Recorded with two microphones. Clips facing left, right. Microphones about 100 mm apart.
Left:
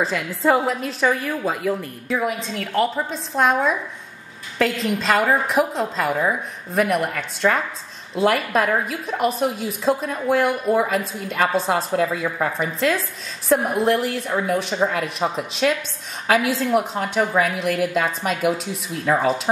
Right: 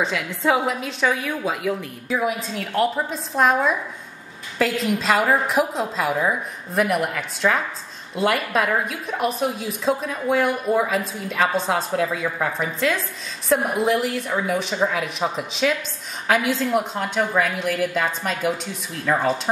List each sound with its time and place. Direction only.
0.0 s a woman's voice: centre (ahead or behind)